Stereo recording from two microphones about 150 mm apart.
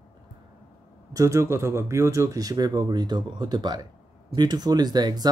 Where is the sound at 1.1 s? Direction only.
20° right (ahead or behind).